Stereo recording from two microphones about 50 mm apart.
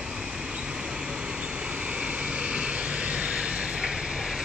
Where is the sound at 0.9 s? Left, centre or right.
Centre.